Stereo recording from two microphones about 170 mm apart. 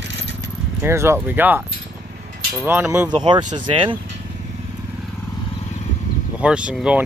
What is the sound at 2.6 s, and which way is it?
Speech, 10° right (ahead or behind).